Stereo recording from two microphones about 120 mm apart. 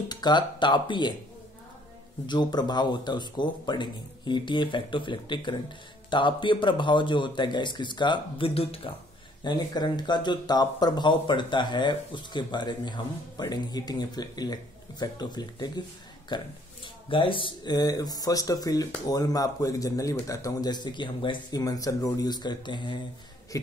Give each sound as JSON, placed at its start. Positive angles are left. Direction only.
{"t": 0.1, "sound": "speech", "side_deg": 35}
{"t": 2.2, "sound": "speech", "side_deg": 35}
{"t": 9.4, "sound": "speech", "side_deg": 35}
{"t": 23.5, "sound": "speech", "side_deg": 25}